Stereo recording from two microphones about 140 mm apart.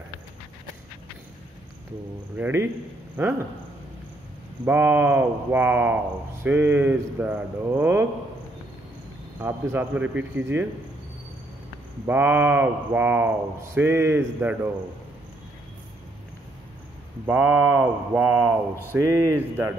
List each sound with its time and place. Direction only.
2.3 s speech: 15° right (ahead or behind)
4.6 s speech: 15° right (ahead or behind)
9.4 s speech: 15° right (ahead or behind)
12.1 s speech: 15° right (ahead or behind)
17.3 s speech: 10° right (ahead or behind)